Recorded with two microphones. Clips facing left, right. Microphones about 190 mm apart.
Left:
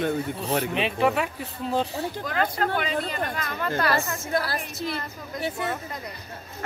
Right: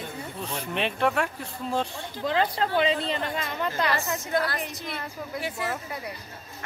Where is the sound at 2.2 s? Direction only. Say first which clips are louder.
Right 3 dB; 25° right (ahead or behind).